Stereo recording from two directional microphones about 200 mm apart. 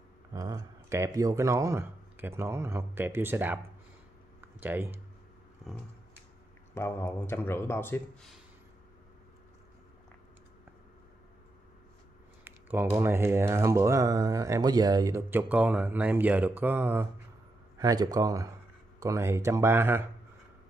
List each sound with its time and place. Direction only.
0.3 s speech: 15° right (ahead or behind)
5.6 s a sound: centre (ahead or behind)
6.7 s speech: 10° left (ahead or behind)
12.4 s typing: 10° right (ahead or behind)
12.9 s speech: 10° right (ahead or behind)